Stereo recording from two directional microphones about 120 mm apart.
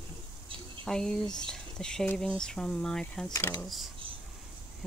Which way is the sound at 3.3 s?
20° left (ahead or behind).